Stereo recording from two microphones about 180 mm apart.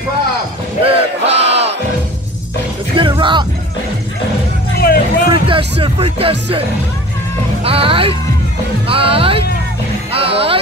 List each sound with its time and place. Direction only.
0.8 s battle cry: 35° right (ahead or behind)
3.0 s music: 25° right (ahead or behind)
4.7 s music: 55° left (ahead or behind)
5.3 s speech: 30° right (ahead or behind)
7.6 s speech: 30° right (ahead or behind)
10.1 s music: 30° right (ahead or behind)